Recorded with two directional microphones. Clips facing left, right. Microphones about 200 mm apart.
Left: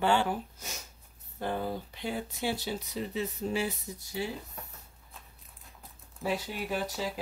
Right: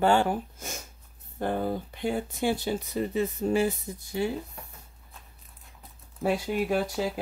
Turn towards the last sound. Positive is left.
turn(degrees=-50)  # may be behind; listen again after turning